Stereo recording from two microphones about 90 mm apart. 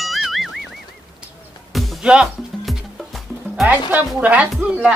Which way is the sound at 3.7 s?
20° right (ahead or behind).